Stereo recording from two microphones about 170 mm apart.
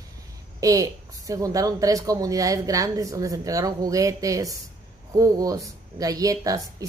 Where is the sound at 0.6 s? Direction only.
20° right (ahead or behind).